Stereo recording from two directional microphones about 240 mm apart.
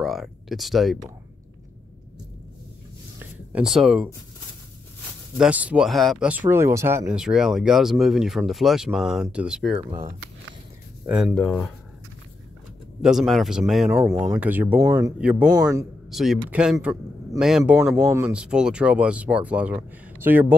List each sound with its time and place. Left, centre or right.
0.0 s speech: centre
3.2 s a sound: centre
5.4 s speech: centre
9.8 s speech: centre
11.1 s speech: centre
13.0 s speech: centre
15.1 s speech: centre
16.1 s a man's voice: centre